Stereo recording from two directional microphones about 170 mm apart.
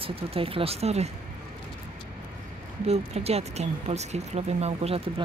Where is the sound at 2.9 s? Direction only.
35° right (ahead or behind).